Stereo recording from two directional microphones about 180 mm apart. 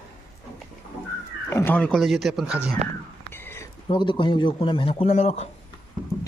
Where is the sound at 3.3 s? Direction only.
10° left (ahead or behind).